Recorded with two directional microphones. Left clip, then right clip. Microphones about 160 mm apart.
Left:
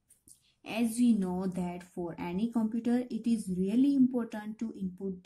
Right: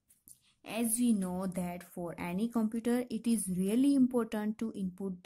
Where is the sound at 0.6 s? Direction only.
35° right (ahead or behind).